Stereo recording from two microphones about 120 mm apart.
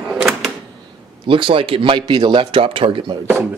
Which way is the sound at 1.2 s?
45° right (ahead or behind).